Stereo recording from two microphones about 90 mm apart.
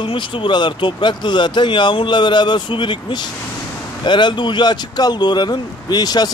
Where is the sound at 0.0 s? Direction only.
70° left (ahead or behind).